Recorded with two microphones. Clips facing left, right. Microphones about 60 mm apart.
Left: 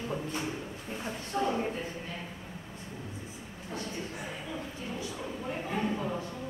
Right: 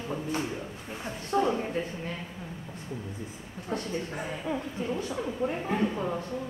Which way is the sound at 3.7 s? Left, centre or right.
Right.